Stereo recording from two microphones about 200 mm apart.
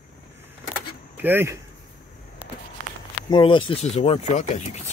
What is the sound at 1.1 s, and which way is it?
Speech, 10° right (ahead or behind).